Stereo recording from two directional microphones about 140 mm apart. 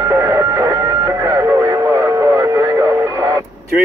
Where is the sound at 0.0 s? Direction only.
20° right (ahead or behind).